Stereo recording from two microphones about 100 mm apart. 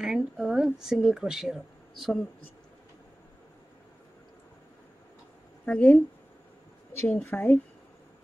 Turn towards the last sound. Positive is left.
turn(degrees=20)  # may be behind; listen again after turning